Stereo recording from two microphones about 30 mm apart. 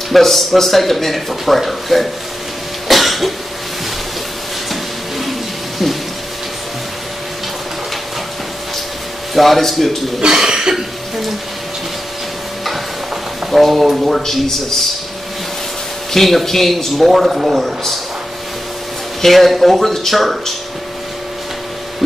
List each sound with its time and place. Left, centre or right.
0.1 s speech: centre
2.9 s cough: centre
9.3 s speech: centre
10.4 s cough: right
13.5 s speech: centre
16.1 s speech: centre
17.3 s a man's voice: right
17.6 s speech: centre
19.2 s speech: centre